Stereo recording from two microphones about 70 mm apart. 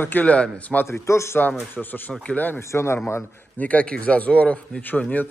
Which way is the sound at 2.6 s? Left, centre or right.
Left.